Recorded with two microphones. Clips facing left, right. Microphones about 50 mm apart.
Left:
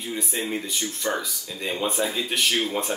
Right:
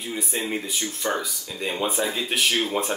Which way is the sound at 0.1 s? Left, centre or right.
Centre.